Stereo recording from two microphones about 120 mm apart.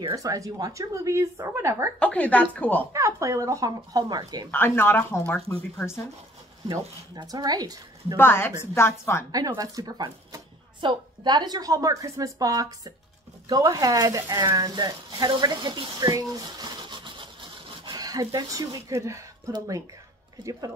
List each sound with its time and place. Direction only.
0.1 s a woman's voice: 30° right (ahead or behind)
2.0 s speech: 10° left (ahead or behind)
2.9 s a woman's voice: 25° right (ahead or behind)
4.5 s a woman's voice: 20° left (ahead or behind)
7.2 s speech: 35° right (ahead or behind)
8.2 s a woman's voice: 20° left (ahead or behind)
9.3 s speech: 30° right (ahead or behind)
20.4 s speech: 40° right (ahead or behind)